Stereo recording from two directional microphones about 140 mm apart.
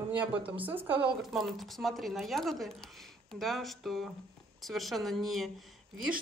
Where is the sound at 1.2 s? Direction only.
Centre (ahead or behind).